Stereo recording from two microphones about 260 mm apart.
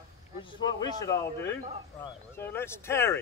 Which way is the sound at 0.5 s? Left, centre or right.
Centre.